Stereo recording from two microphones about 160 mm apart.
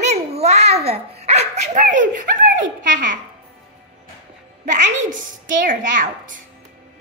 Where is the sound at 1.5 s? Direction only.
45° right (ahead or behind).